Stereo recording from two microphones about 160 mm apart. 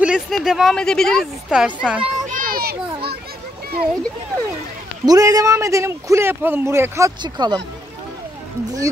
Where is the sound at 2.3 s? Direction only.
60° right (ahead or behind).